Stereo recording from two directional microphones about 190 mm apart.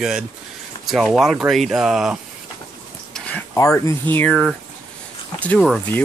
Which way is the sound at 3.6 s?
15° left (ahead or behind).